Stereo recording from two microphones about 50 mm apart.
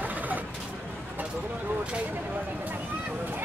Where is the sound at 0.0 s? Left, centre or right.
Right.